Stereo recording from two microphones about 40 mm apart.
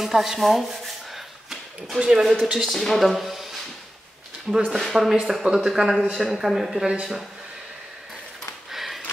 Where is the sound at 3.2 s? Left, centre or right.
Centre.